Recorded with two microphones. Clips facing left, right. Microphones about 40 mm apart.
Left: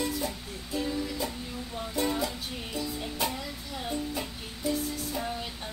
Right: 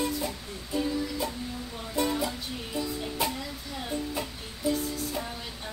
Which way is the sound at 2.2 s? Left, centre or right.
Centre.